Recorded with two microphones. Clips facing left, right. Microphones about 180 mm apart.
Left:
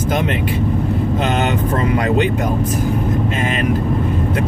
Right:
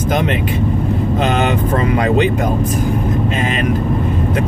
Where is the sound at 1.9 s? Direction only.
25° right (ahead or behind).